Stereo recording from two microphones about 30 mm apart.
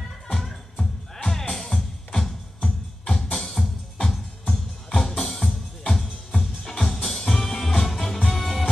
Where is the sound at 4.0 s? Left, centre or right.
Centre.